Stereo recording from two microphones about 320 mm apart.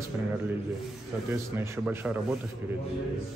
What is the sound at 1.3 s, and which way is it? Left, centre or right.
Speech, centre.